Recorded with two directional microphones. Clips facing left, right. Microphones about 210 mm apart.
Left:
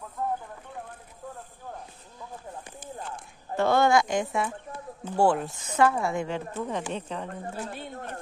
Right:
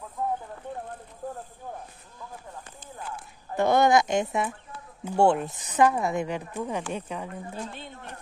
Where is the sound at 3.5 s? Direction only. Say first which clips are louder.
Right 1 dB; 15° right (ahead or behind).